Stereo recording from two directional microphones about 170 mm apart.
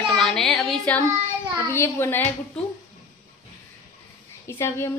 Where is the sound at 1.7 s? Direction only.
15° left (ahead or behind).